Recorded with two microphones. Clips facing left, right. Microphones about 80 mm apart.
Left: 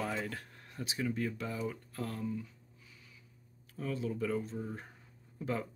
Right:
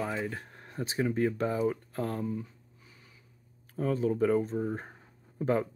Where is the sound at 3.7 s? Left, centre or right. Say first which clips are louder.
Right 8 dB; right.